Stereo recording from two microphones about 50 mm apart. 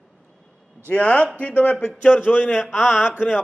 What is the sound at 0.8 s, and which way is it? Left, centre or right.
A man's voice, left.